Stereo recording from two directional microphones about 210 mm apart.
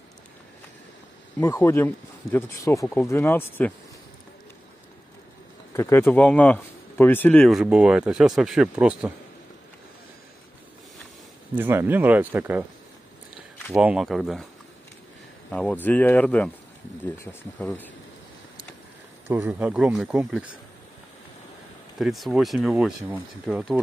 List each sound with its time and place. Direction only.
1.4 s speech: 10° left (ahead or behind)
5.8 s speech: 10° left (ahead or behind); by 9.1 s 5° right (ahead or behind)
11.5 s speech: 10° right (ahead or behind)
15.5 s speech: 5° left (ahead or behind)
19.2 s speech: 10° right (ahead or behind)
21.9 s speech: centre (ahead or behind)